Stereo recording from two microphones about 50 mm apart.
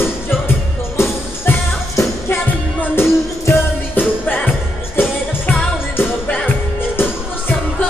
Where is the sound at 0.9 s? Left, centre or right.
Left.